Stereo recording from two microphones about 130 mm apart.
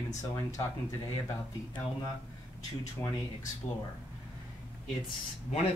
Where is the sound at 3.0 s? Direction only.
20° left (ahead or behind).